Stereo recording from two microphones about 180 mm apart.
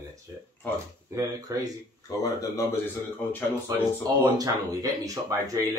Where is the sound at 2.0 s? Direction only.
20° left (ahead or behind).